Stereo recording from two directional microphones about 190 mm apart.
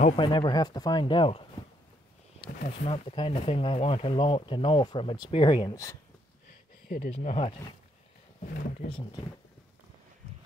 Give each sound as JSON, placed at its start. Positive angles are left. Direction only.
{"t": 0.0, "sound": "speech", "side_deg": 25}
{"t": 2.8, "sound": "speech", "side_deg": 30}
{"t": 6.9, "sound": "speech", "side_deg": 50}
{"t": 8.5, "sound": "speech", "side_deg": 50}